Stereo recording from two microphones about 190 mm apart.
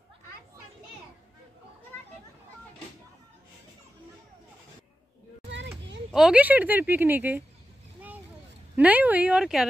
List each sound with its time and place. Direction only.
1.9 s children playing: 10° left (ahead or behind)
6.1 s speech: 5° right (ahead or behind)
8.7 s speech: 10° right (ahead or behind)